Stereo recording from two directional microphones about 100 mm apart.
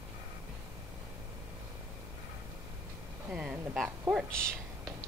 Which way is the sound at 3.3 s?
10° right (ahead or behind).